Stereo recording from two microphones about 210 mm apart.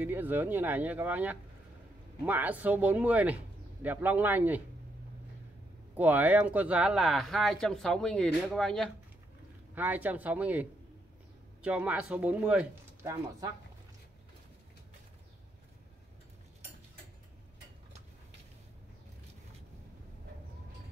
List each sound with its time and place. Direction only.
0.0 s speech: 10° right (ahead or behind)
5.9 s speech: 10° right (ahead or behind)